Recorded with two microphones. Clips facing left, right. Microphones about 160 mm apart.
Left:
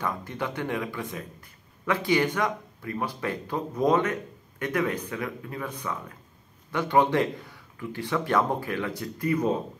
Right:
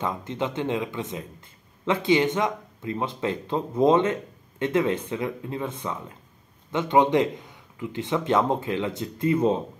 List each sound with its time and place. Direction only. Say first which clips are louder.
0.0 s speech: right 3 dB; 20° right (ahead or behind)